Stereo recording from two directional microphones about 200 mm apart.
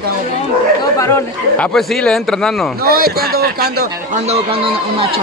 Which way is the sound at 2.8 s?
50° right (ahead or behind).